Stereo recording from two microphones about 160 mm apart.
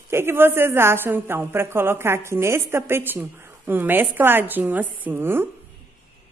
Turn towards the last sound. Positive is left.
turn(degrees=-15)  # may be behind; listen again after turning